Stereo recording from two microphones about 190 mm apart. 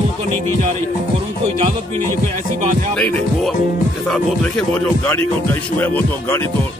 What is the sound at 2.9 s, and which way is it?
Speech, 5° left (ahead or behind).